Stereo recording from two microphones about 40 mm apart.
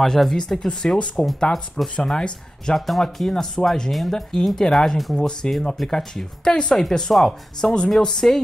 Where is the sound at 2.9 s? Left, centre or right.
Centre.